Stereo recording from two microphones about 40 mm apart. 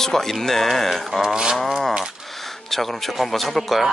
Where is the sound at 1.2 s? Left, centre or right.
Centre.